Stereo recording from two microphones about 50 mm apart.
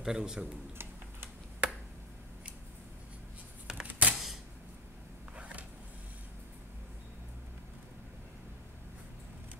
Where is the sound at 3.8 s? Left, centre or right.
Right.